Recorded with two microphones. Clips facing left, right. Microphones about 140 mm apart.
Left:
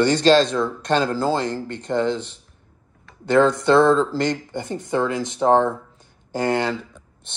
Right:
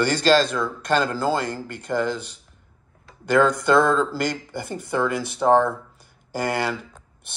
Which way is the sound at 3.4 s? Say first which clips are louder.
Left 2 dB; 20° left (ahead or behind).